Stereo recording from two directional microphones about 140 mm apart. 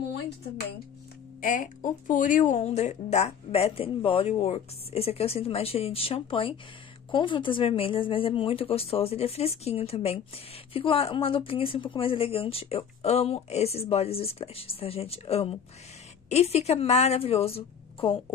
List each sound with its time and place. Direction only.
1.4 s speech: 70° left (ahead or behind); by 17.6 s 45° left (ahead or behind)